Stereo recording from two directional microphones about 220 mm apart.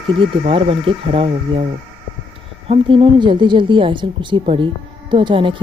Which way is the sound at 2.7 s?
25° right (ahead or behind).